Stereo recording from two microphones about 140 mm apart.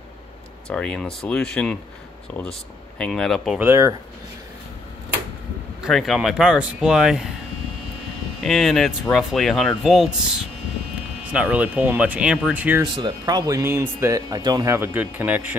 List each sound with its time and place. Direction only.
0.7 s speech: 5° left (ahead or behind)
3.0 s speech: 5° left (ahead or behind)
3.5 s speech: 15° right (ahead or behind)
5.8 s speech: centre (ahead or behind)
8.4 s speech: centre (ahead or behind)
12.8 s speech: 35° right (ahead or behind); by 15.5 s 10° right (ahead or behind)